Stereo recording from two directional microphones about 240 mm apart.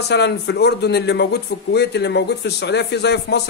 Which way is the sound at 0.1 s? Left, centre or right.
Left.